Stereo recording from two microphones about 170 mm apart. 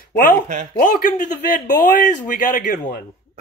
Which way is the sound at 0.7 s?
50° left (ahead or behind).